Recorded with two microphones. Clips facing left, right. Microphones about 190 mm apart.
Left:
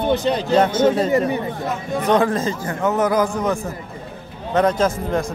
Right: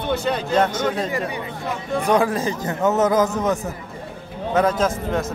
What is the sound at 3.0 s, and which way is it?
Speech, 20° right (ahead or behind).